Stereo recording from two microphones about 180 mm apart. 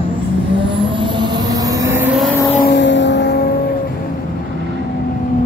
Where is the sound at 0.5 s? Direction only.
30° right (ahead or behind).